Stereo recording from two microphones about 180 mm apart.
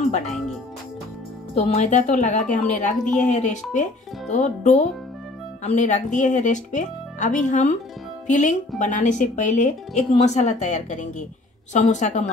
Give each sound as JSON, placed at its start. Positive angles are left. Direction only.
{"t": 1.5, "sound": "a woman's voice", "side_deg": 35}